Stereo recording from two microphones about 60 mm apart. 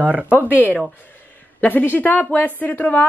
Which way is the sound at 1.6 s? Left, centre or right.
Left.